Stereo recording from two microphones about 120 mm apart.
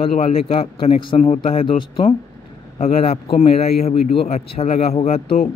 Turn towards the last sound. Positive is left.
turn(degrees=55)  # may be behind; listen again after turning